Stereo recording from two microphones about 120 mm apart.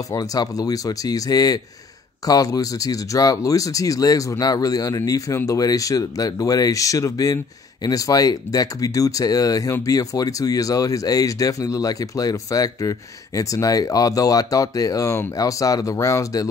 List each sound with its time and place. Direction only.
0.1 s speech: 30° left (ahead or behind)